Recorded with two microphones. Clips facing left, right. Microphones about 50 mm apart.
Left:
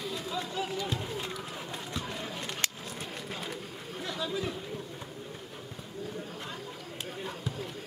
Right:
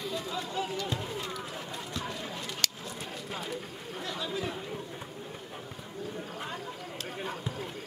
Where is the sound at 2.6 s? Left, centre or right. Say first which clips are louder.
Right 1 dB; centre.